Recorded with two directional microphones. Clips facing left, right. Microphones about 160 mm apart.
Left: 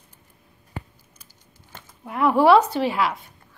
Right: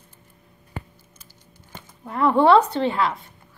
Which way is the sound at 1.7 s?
5° left (ahead or behind).